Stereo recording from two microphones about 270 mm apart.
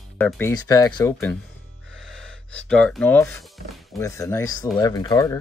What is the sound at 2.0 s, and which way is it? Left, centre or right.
Gasp, centre.